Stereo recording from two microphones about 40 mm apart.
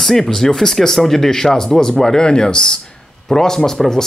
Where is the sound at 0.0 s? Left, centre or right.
Centre.